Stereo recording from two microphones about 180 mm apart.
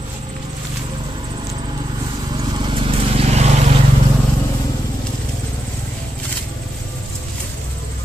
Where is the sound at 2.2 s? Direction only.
25° right (ahead or behind); by 3.7 s 40° right (ahead or behind).